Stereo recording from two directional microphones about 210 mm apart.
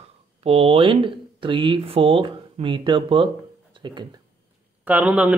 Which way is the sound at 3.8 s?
25° right (ahead or behind).